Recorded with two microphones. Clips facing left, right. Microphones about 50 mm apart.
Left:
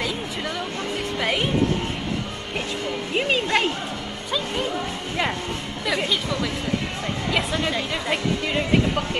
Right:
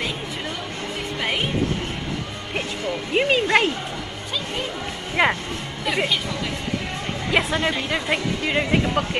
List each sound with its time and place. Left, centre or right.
3.2 s speech: centre
5.2 s speech: right
7.3 s speech: centre